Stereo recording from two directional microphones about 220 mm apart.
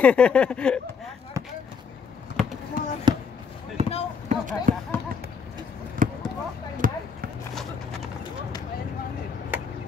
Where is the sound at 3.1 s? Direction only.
20° right (ahead or behind).